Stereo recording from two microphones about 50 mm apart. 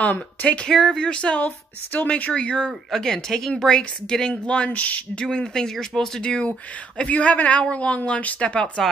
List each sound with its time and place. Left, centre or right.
0.0 s speech: left
0.7 s speech: centre
5.2 s speech: centre